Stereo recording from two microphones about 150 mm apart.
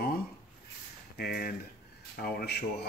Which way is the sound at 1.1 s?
90° left.